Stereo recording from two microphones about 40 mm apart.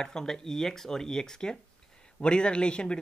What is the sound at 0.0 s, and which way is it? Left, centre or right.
Speech, centre.